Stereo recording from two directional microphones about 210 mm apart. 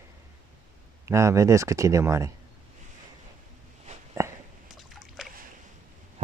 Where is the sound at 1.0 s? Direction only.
15° right (ahead or behind).